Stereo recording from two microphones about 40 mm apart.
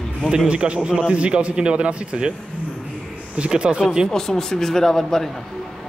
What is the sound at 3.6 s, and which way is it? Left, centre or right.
Speech, right.